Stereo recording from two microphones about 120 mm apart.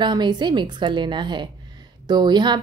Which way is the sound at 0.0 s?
40° right (ahead or behind).